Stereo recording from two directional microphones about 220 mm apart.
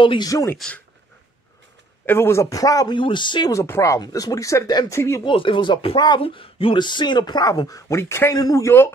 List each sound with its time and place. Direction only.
0.0 s speech: 20° left (ahead or behind)
0.6 s speech: 5° left (ahead or behind)
2.0 s speech: 10° left (ahead or behind)
5.3 s speech: 25° left (ahead or behind)